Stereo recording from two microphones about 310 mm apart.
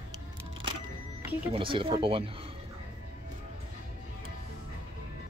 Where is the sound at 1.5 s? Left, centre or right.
Centre.